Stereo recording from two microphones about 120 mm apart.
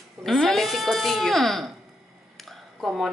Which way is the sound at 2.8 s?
Centre (ahead or behind).